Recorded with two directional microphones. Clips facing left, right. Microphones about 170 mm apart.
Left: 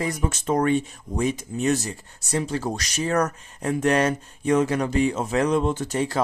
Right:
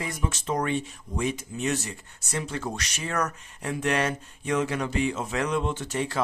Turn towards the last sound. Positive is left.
turn(degrees=40)  # may be behind; listen again after turning